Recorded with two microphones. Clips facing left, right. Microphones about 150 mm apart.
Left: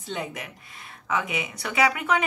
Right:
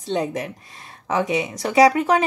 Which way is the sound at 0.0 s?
35° right (ahead or behind).